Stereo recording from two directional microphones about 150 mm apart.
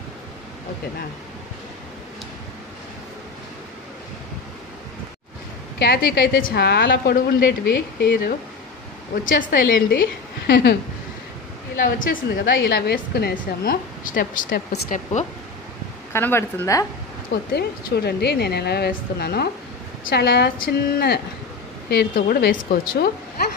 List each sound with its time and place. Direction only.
5.8 s a woman's voice: 90° left
9.2 s a woman's voice: 65° left (ahead or behind); by 10.8 s 90° left
11.7 s a woman's voice: 65° left (ahead or behind)
16.1 s speech: 15° left (ahead or behind)
17.5 s a woman's voice: 90° left